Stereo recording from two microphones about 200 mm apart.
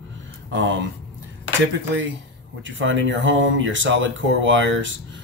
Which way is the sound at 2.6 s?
70° right (ahead or behind).